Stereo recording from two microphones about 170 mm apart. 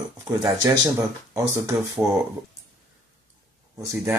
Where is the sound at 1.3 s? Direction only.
20° right (ahead or behind).